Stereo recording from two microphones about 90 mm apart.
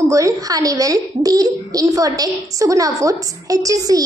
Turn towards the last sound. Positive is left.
turn(degrees=-40)  # may be behind; listen again after turning